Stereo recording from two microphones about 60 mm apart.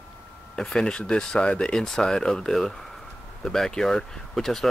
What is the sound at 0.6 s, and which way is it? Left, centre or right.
Speech, centre.